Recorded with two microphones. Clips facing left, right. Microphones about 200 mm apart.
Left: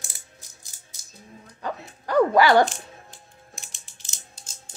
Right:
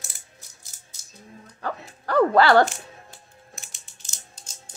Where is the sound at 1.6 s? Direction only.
15° left (ahead or behind).